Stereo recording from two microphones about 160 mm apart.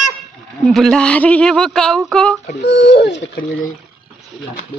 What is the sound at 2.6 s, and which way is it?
Speech, 90° left.